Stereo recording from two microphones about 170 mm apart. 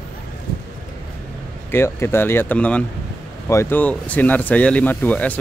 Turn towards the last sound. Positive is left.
turn(degrees=10)  # may be behind; listen again after turning